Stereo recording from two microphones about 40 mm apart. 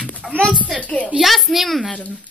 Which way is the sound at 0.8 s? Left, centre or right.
Left.